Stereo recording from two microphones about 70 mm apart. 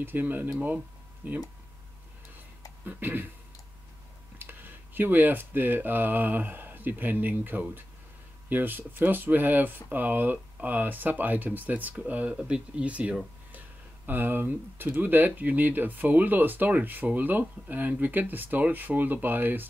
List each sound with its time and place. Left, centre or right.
0.0 s speech: right
2.8 s speech: right
4.4 s speech: right
14.0 s speech: right